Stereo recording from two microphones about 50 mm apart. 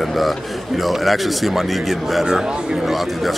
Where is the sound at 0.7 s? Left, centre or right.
Centre.